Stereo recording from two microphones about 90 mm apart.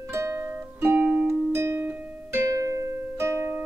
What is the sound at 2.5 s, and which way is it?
Music, 35° right (ahead or behind).